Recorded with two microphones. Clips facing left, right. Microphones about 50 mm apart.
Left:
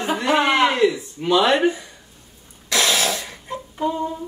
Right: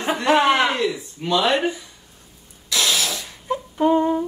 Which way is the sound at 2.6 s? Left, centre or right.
Left.